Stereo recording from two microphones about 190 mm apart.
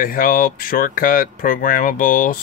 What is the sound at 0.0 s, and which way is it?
Speech, 50° left (ahead or behind).